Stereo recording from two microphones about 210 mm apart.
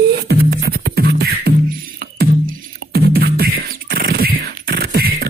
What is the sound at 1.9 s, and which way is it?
Music, 45° right (ahead or behind).